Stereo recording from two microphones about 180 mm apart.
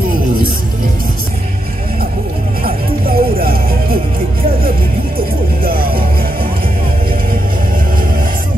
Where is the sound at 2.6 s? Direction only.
55° right (ahead or behind).